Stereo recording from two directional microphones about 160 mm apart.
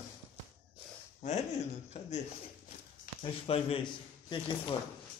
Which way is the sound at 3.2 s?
35° left (ahead or behind).